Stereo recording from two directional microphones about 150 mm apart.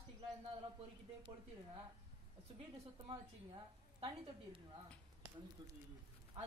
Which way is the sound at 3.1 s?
35° right (ahead or behind).